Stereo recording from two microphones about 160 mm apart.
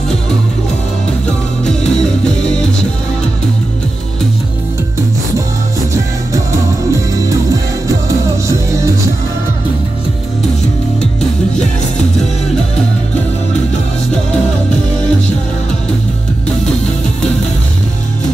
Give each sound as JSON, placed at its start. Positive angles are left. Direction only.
{"t": 1.6, "sound": "music", "side_deg": 5}
{"t": 6.3, "sound": "music", "side_deg": -20}
{"t": 11.0, "sound": "music", "side_deg": 5}